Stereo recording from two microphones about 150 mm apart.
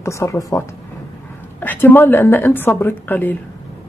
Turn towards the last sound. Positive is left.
turn(degrees=10)  # may be behind; listen again after turning